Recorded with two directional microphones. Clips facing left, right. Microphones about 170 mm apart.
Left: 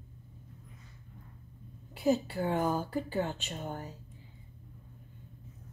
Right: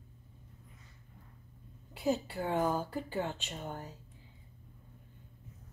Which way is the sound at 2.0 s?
Centre (ahead or behind).